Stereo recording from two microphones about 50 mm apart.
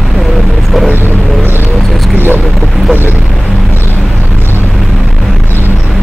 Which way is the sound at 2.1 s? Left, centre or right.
Right.